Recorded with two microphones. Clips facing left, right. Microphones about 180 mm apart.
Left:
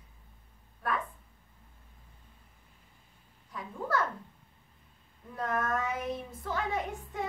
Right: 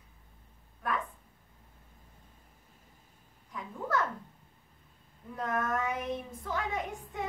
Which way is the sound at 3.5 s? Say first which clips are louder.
Even; centre (ahead or behind).